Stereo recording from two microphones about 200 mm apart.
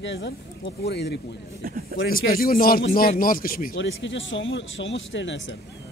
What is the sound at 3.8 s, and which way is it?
Speech, 65° left (ahead or behind).